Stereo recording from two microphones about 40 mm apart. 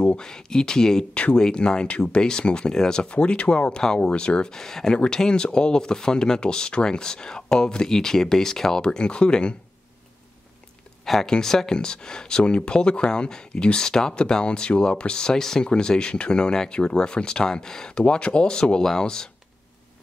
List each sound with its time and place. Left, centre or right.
0.0 s speech: left
1.1 s speech: left
3.1 s speech: left
8.8 s speech: left
11.2 s speech: centre